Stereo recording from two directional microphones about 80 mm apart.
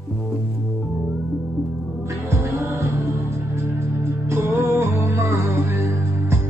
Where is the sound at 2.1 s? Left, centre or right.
Right.